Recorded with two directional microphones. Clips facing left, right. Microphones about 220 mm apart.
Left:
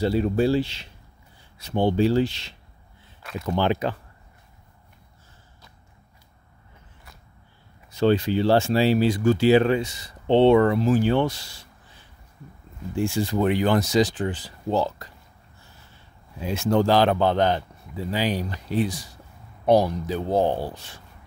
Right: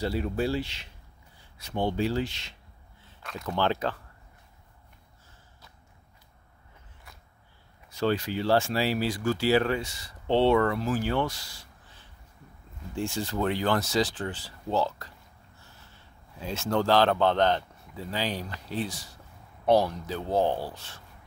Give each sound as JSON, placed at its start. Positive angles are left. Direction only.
{"t": 0.0, "sound": "speech", "side_deg": 25}
{"t": 3.2, "sound": "speech", "side_deg": 5}
{"t": 7.9, "sound": "speech", "side_deg": 25}
{"t": 12.9, "sound": "speech", "side_deg": 10}
{"t": 16.3, "sound": "speech", "side_deg": 15}